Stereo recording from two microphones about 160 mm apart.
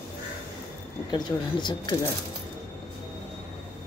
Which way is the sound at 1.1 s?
25° left (ahead or behind).